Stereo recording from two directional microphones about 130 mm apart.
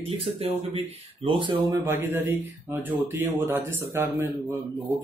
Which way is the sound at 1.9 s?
20° right (ahead or behind).